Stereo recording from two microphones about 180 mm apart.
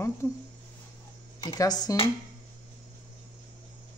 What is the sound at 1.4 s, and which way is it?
Speech, 20° left (ahead or behind).